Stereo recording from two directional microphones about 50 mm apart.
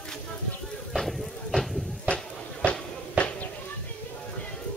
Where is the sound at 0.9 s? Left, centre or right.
Centre.